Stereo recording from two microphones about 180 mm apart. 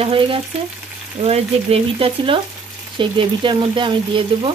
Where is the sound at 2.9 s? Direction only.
25° right (ahead or behind).